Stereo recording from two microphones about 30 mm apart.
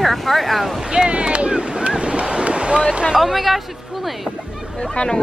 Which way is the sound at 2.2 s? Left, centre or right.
Right.